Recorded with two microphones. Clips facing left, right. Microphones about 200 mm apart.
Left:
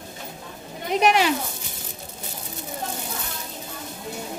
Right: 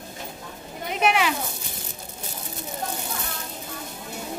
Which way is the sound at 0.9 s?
35° left (ahead or behind).